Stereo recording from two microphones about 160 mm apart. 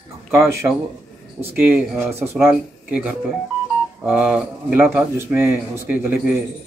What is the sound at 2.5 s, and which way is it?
Speech, 10° right (ahead or behind).